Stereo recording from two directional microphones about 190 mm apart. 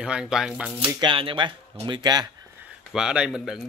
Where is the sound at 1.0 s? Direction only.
25° right (ahead or behind).